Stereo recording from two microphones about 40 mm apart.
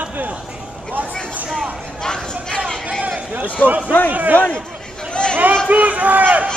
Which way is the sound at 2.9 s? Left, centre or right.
Right.